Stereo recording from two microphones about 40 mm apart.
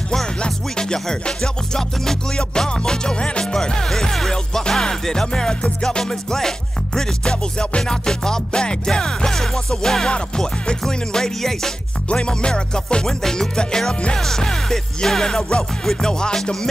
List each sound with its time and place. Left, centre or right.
0.4 s music: centre
10.1 s music: left
12.1 s music: left